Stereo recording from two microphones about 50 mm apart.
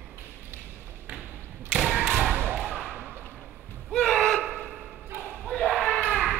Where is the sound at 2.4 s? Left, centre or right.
Right.